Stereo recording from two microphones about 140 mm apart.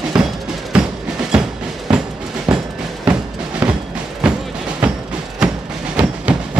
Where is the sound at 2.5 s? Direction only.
10° right (ahead or behind).